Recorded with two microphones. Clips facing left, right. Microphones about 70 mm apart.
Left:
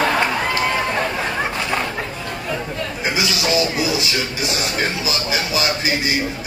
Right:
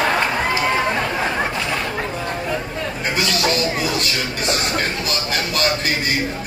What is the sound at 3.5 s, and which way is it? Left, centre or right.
Music, centre.